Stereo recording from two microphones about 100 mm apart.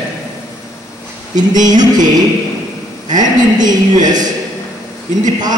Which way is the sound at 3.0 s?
45° right (ahead or behind).